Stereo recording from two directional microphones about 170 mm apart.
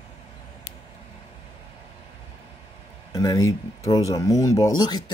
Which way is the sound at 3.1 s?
20° left (ahead or behind).